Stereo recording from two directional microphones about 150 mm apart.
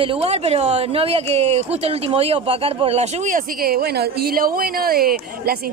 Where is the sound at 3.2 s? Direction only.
75° right (ahead or behind).